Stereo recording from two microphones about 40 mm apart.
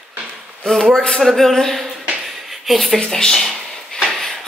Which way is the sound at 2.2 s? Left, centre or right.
Centre.